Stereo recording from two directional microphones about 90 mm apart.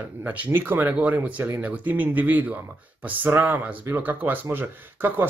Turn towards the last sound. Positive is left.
turn(degrees=-20)  # may be behind; listen again after turning